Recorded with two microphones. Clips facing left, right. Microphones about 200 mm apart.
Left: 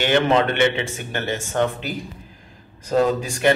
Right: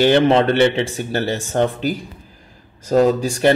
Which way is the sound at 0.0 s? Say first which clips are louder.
Right 5 dB; 35° right (ahead or behind).